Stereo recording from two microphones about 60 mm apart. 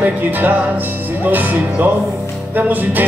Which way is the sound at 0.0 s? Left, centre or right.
Right.